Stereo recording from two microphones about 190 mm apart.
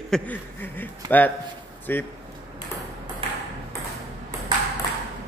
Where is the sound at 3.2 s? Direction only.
30° right (ahead or behind).